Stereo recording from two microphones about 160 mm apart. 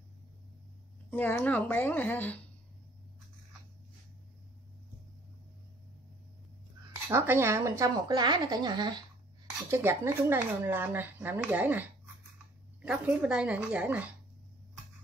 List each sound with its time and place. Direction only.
1.1 s a woman's voice: 10° left (ahead or behind)
7.1 s a woman's voice: 15° right (ahead or behind)
9.7 s speech: 15° right (ahead or behind)